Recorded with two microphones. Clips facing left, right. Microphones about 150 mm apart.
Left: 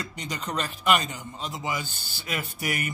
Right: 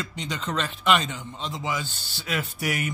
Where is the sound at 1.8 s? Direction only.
50° left (ahead or behind).